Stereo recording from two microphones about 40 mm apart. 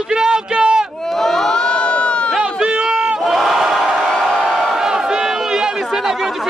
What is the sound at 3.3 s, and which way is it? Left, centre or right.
Battle cry, centre.